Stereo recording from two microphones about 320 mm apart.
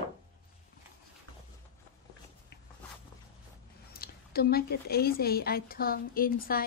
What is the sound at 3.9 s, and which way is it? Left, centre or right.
A woman's voice, left.